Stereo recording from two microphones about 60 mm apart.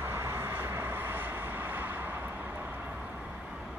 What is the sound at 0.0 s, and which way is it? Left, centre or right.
Vehicle, right.